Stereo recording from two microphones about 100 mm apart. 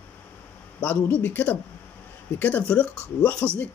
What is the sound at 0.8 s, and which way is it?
A man's voice, 15° left (ahead or behind).